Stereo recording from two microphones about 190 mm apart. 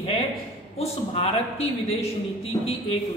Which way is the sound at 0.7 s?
30° left (ahead or behind).